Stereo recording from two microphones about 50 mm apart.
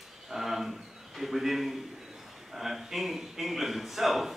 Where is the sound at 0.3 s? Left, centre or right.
Centre.